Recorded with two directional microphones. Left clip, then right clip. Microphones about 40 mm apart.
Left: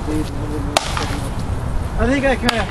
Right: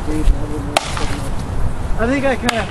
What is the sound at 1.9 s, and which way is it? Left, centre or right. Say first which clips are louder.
Speech: even; left.